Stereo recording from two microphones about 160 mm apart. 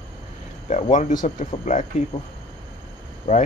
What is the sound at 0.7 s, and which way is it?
Speech, 45° left (ahead or behind).